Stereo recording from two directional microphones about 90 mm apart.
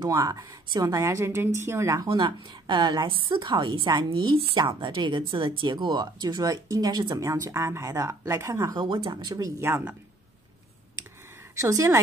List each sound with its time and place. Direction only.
0.0 s a woman's voice: 40° right (ahead or behind)
2.0 s speech: 60° right (ahead or behind); by 8.7 s 35° right (ahead or behind)
8.7 s speech: 70° right (ahead or behind)
9.6 s speech: 30° right (ahead or behind)
11.5 s a woman's voice: 35° right (ahead or behind)